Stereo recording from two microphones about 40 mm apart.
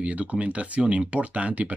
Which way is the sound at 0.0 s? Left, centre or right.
Right.